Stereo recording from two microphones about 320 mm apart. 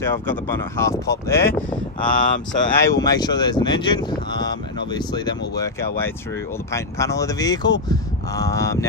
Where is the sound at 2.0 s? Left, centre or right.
Left.